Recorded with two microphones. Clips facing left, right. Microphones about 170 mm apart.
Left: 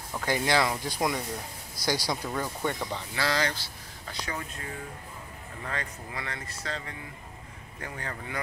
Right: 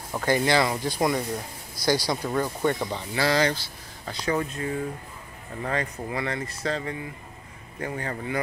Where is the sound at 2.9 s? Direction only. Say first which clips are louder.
Right 5 dB; 20° right (ahead or behind).